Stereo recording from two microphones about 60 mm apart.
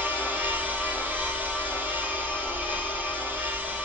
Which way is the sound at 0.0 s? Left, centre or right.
Right.